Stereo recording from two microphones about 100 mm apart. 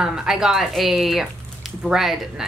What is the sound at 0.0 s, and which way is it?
A woman's voice, 5° right (ahead or behind).